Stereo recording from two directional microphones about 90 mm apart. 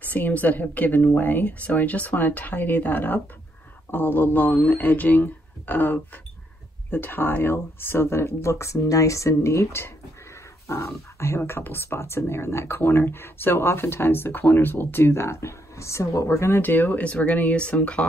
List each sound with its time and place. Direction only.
0.0 s speech: 20° left (ahead or behind)